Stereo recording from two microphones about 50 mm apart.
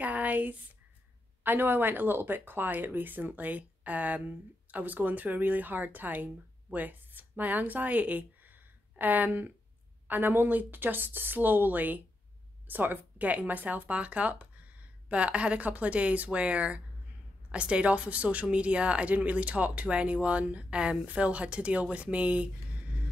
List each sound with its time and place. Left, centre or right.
0.0 s speech: right
1.4 s speech: right